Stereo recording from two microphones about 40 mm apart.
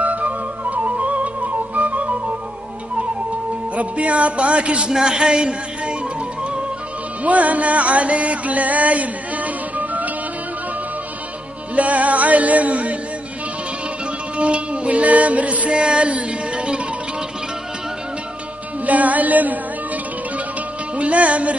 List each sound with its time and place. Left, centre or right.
0.0 s music: right
3.7 s speech: right
7.2 s music: right
11.7 s speech: right
14.3 s music: right
18.9 s music: right
20.9 s music: right